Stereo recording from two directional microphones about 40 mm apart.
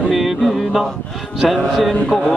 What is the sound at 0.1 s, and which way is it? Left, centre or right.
Music, centre.